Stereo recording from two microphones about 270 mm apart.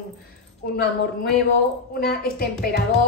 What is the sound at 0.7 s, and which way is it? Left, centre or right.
A woman's voice, left.